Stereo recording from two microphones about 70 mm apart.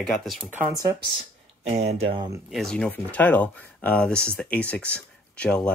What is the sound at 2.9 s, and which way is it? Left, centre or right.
Speech, left.